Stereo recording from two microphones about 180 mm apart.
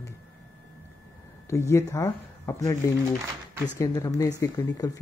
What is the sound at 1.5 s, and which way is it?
Speech, 15° left (ahead or behind).